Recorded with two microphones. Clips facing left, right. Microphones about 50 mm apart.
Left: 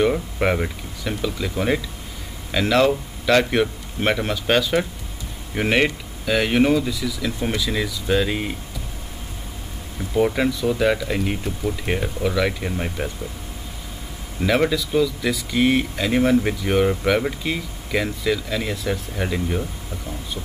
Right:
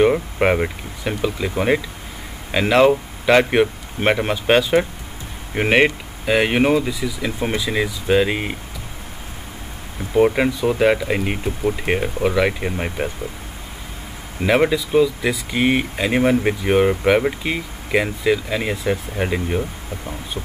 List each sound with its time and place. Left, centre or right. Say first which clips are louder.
0.0 s speech: right 4 dB; right
10.1 s speech: right 4 dB; right
14.4 s speech: right 3 dB; right